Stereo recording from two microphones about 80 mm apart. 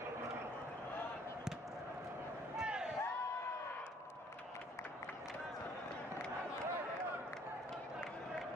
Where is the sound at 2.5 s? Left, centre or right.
Centre.